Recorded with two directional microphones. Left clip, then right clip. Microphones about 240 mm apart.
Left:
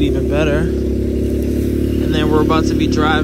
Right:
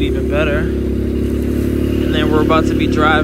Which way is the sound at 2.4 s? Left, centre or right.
Centre.